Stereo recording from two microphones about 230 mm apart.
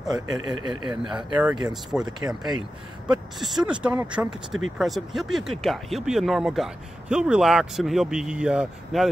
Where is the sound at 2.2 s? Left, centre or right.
Centre.